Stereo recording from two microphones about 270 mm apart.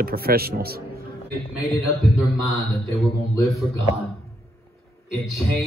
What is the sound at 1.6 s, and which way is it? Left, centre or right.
Speech, centre.